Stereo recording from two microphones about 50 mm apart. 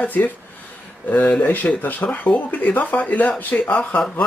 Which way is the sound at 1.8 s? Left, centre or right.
Left.